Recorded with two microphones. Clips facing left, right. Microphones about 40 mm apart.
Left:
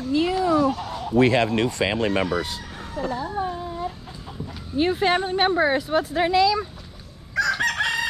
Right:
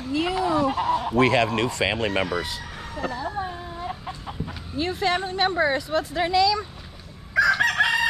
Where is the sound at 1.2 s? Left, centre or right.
Right.